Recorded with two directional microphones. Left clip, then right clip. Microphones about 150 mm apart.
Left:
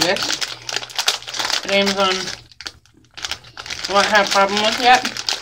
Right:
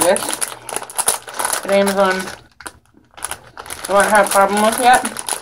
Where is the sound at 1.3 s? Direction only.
Centre (ahead or behind).